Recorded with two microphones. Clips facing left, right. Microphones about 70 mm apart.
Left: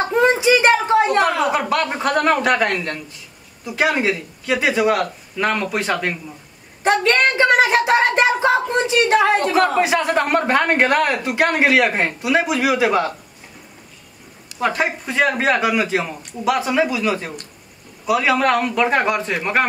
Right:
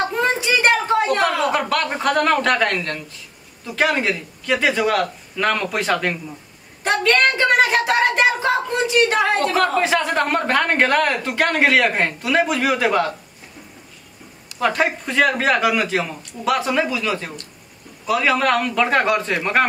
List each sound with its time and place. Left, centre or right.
0.1 s a sound: centre
1.9 s speech: centre
7.0 s speech: left
14.6 s a man's voice: centre